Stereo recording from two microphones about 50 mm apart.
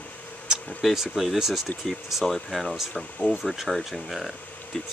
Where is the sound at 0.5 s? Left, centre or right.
Centre.